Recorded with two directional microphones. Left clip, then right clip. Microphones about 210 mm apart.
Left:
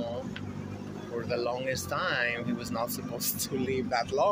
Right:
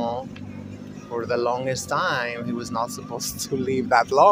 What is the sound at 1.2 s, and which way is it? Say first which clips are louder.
Speech: right 8 dB; 40° right (ahead or behind).